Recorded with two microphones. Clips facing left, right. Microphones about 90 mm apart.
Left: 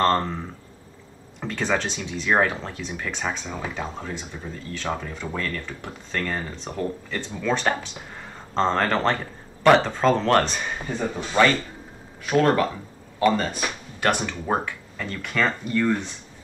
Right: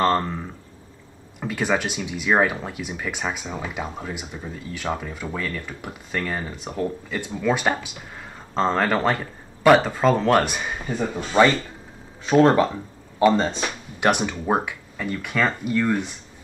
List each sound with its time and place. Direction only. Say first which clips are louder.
0.0 s speech: even; 5° right (ahead or behind)
1.4 s speech: right 2 dB; 10° right (ahead or behind)